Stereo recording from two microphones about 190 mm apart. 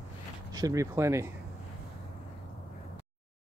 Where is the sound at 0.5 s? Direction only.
15° right (ahead or behind).